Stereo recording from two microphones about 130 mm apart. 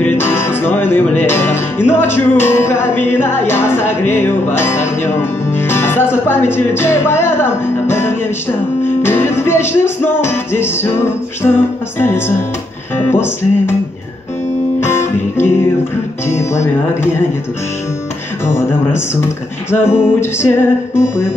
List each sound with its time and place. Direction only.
0.0 s music: 20° left (ahead or behind)
14.8 s music: 20° left (ahead or behind)
19.7 s music: 20° left (ahead or behind)